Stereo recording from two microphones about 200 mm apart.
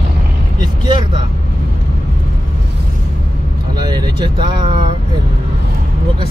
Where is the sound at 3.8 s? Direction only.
20° right (ahead or behind).